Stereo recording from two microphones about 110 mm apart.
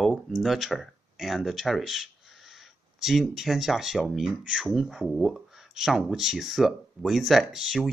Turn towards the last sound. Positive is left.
turn(degrees=0)  # may be behind; listen again after turning